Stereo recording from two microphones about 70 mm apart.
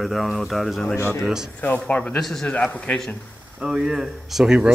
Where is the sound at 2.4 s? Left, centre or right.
Centre.